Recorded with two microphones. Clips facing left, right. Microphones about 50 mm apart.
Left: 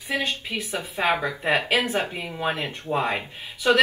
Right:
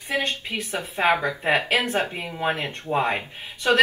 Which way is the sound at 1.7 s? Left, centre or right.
Centre.